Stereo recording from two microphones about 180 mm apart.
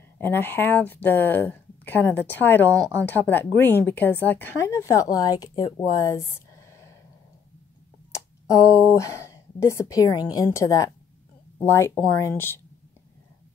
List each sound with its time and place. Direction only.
0.2 s a woman's voice: 10° left (ahead or behind)
8.1 s a woman's voice: 15° left (ahead or behind)